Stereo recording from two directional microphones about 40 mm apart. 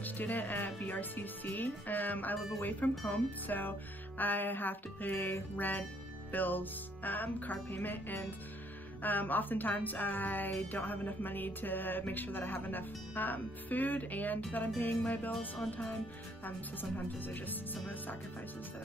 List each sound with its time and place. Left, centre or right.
0.0 s speech: left
16.4 s speech: left